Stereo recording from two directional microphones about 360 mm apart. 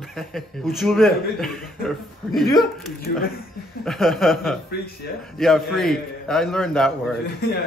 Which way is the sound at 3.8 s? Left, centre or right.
Centre.